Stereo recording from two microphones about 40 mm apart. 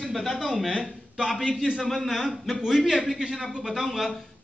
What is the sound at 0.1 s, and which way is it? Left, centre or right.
A man's voice, centre.